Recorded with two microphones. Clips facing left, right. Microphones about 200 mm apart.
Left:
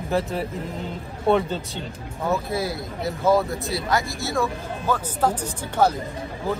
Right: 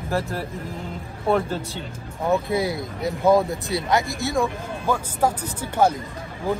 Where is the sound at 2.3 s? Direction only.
15° right (ahead or behind).